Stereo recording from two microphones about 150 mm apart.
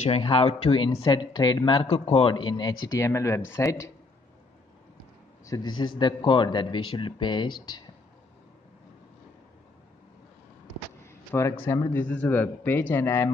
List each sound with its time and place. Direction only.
0.0 s speech: 40° left (ahead or behind); by 3.9 s 20° left (ahead or behind)
5.4 s speech: 25° left (ahead or behind)
11.1 s a sound: 20° left (ahead or behind)
11.6 s speech: 20° left (ahead or behind)